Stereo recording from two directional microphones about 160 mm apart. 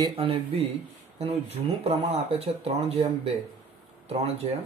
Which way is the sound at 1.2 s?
40° right (ahead or behind).